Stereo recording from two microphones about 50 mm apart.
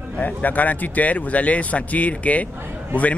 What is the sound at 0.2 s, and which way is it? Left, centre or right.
A man's voice, left.